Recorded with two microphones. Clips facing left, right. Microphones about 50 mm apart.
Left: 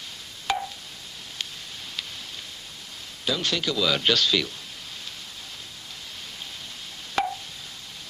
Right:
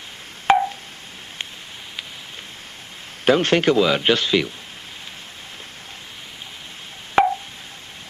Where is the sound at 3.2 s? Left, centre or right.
Right.